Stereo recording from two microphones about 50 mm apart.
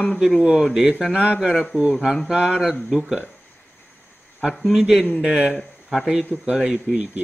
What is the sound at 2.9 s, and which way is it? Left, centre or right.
Speech, centre.